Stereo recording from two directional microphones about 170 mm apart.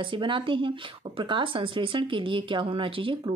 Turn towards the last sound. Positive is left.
turn(degrees=-30)  # may be behind; listen again after turning